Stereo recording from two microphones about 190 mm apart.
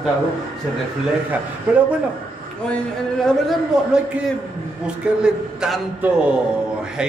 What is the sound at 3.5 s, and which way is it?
Speech, 5° right (ahead or behind).